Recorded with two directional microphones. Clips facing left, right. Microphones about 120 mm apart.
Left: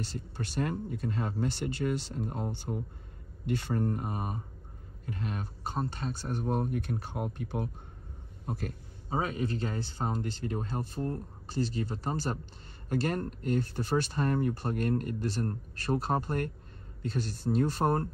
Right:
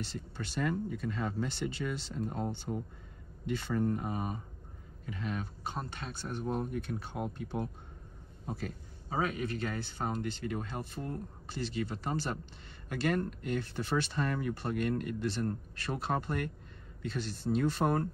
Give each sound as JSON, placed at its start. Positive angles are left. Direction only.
{"t": 0.0, "sound": "speech", "side_deg": 45}
{"t": 3.4, "sound": "speech", "side_deg": 50}
{"t": 8.5, "sound": "speech", "side_deg": 55}
{"t": 9.1, "sound": "speech", "side_deg": 35}